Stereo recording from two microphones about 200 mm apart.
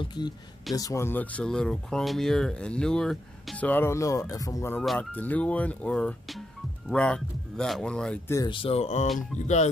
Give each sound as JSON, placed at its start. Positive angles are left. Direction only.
{"t": 0.0, "sound": "a sound", "side_deg": 20}
{"t": 0.7, "sound": "speech", "side_deg": 15}
{"t": 8.4, "sound": "speech", "side_deg": 25}
{"t": 9.1, "sound": "speech", "side_deg": 0}